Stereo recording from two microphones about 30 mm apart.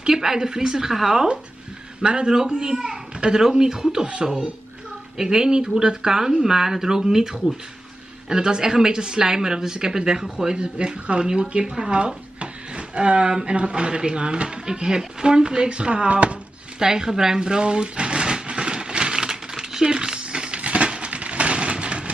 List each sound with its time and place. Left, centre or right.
0.1 s a woman's voice: centre
2.0 s speech: right
10.6 s speech: right
11.6 s a woman's voice: centre
11.9 s speech: right
16.1 s speech: right
16.8 s a sound: right